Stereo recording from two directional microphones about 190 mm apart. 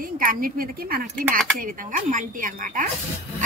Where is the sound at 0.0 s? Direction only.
45° right (ahead or behind).